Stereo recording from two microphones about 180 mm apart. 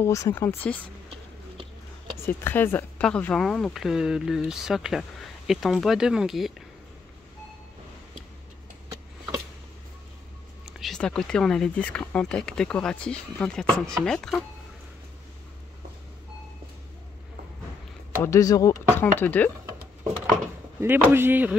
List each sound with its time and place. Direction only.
0.0 s speech: 15° left (ahead or behind)
2.2 s speech: 10° left (ahead or behind)
10.6 s speech: centre (ahead or behind)
18.2 s speech: 20° left (ahead or behind)
20.8 s speech: 10° right (ahead or behind)